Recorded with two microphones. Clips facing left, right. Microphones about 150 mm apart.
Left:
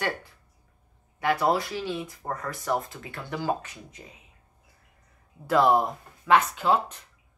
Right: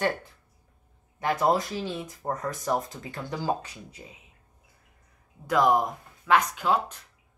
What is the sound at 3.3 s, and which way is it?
Speech, 30° right (ahead or behind).